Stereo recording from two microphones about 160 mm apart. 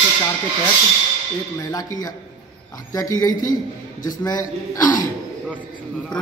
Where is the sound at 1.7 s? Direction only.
20° left (ahead or behind).